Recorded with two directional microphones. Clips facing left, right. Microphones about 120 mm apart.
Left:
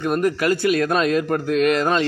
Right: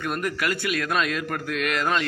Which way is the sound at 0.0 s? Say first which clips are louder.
Left 7 dB; 30° left (ahead or behind).